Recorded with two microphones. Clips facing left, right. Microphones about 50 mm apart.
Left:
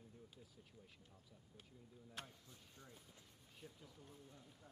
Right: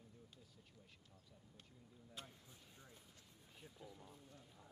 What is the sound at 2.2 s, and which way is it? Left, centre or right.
Speech, left.